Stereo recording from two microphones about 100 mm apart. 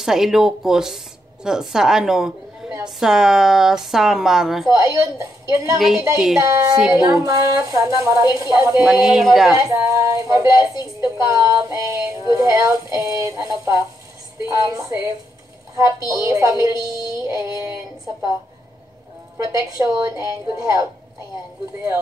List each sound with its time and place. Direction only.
0.0 s speech: 5° right (ahead or behind)
4.6 s a woman's voice: 35° right (ahead or behind)
5.8 s speech: 5° right (ahead or behind)
6.4 s a woman's voice: 40° right (ahead or behind)
9.0 s speech: 5° right (ahead or behind)
9.6 s a woman's voice: 30° right (ahead or behind)
10.6 s a woman's voice: 40° left (ahead or behind)
11.2 s a woman's voice: 35° right (ahead or behind)
17.0 s music: 40° left (ahead or behind)
17.4 s a woman's voice: 30° right (ahead or behind)
19.3 s a woman's voice: 30° right (ahead or behind)